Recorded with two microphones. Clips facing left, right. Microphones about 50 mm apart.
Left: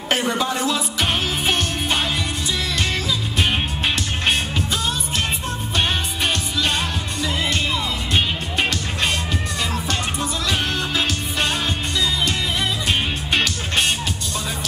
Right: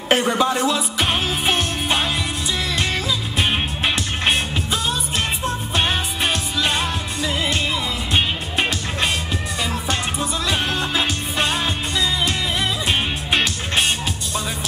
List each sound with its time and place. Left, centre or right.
0.1 s music: centre
3.3 s music: centre
5.8 s music: centre